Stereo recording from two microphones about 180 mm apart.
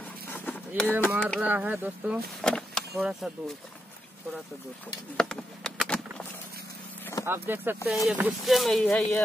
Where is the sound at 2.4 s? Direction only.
5° left (ahead or behind).